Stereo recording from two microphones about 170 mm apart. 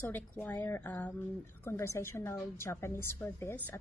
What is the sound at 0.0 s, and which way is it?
A woman's voice, 15° left (ahead or behind).